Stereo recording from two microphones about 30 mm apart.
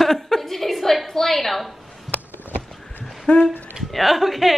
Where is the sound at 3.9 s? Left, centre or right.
Centre.